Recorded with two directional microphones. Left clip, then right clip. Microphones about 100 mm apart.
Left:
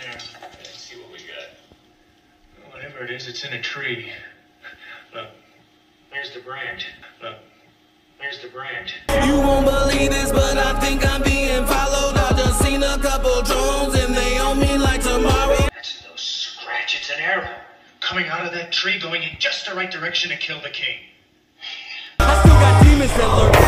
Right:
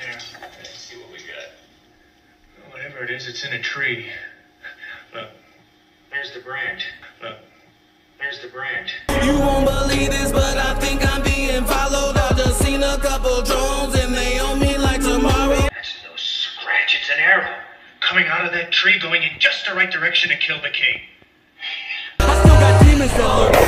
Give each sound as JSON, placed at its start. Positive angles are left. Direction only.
{"t": 3.3, "sound": "a man's voice", "side_deg": -30}
{"t": 3.8, "sound": "speech", "side_deg": 30}
{"t": 6.5, "sound": "a man's voice", "side_deg": -30}
{"t": 9.0, "sound": "music", "side_deg": 0}
{"t": 16.9, "sound": "a sound", "side_deg": -10}
{"t": 20.2, "sound": "speech", "side_deg": -10}
{"t": 21.6, "sound": "a sound", "side_deg": -5}
{"t": 23.1, "sound": "speech", "side_deg": 0}